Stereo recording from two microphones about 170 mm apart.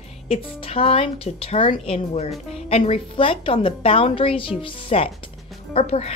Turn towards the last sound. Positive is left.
turn(degrees=40)  # may be behind; listen again after turning